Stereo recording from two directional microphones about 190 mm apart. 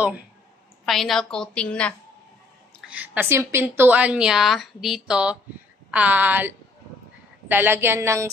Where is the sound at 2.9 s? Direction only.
10° right (ahead or behind).